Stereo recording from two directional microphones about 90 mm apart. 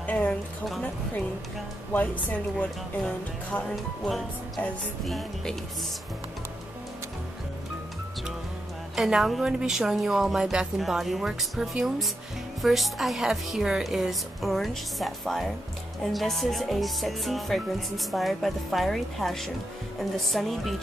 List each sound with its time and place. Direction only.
0.0 s a sound: 15° left (ahead or behind)
1.9 s a woman's voice: 20° left (ahead or behind)
5.0 s speech: 5° left (ahead or behind)
8.9 s speech: 5° right (ahead or behind)